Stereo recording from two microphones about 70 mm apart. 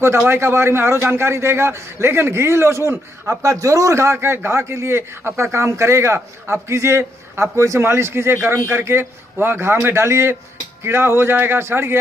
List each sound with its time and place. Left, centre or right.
0.3 s a man's voice: right